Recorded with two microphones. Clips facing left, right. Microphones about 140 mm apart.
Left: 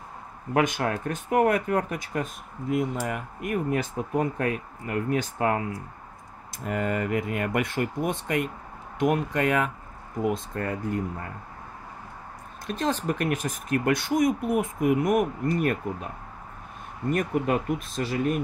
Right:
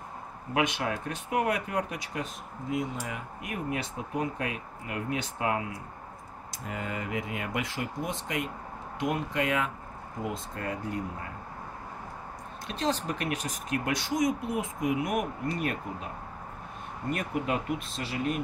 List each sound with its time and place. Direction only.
0.6 s speech: 45° left (ahead or behind)
6.6 s speech: 55° left (ahead or behind)
12.6 s speech: 50° left (ahead or behind)
17.1 s speech: 45° left (ahead or behind)